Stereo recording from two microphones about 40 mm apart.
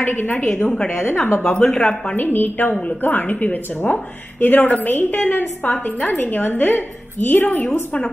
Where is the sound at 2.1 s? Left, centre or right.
Left.